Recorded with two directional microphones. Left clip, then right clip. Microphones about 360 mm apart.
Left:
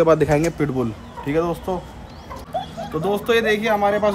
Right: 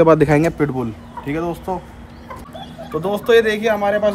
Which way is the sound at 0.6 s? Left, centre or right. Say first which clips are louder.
Right 2 dB; centre.